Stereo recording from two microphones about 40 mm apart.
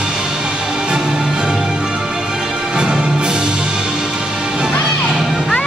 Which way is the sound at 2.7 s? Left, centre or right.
Right.